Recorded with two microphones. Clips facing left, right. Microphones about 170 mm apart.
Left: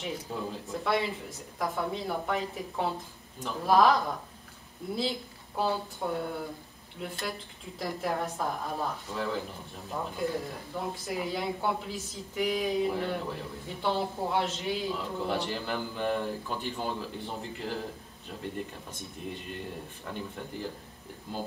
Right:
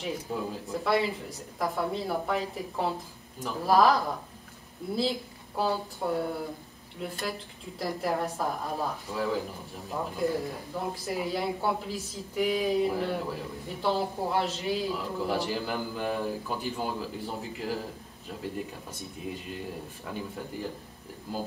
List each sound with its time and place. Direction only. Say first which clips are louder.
0.0 s speech: right 2 dB; 5° right (ahead or behind)
5.6 s speech: right 1 dB; centre (ahead or behind)